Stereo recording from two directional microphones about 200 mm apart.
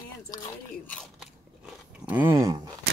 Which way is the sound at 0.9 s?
Centre (ahead or behind).